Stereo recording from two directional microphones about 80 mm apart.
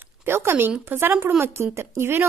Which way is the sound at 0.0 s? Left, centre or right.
Right.